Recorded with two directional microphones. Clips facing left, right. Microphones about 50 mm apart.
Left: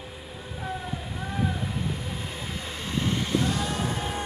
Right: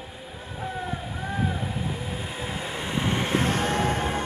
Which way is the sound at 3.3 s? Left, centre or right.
Right.